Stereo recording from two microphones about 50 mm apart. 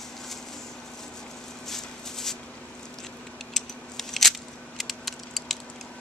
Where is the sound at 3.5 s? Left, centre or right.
Centre.